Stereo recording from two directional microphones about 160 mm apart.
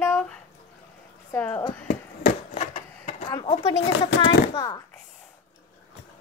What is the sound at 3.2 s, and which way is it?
Speech, 25° left (ahead or behind).